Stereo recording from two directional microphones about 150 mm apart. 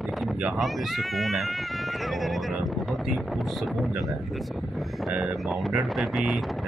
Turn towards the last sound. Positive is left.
turn(degrees=0)  # may be behind; listen again after turning